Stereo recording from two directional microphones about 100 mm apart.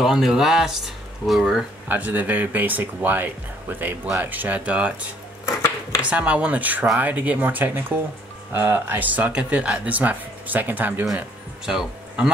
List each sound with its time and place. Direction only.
0.0 s speech: 5° right (ahead or behind)
1.9 s speech: 15° right (ahead or behind)
5.4 s a sound: 25° left (ahead or behind)
6.0 s speech: 10° right (ahead or behind)
11.1 s speech: 5° right (ahead or behind)